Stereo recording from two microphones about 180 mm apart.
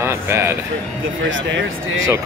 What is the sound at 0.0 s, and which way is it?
Speech, 15° right (ahead or behind).